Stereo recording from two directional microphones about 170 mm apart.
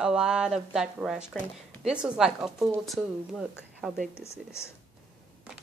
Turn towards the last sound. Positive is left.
turn(degrees=15)  # may be behind; listen again after turning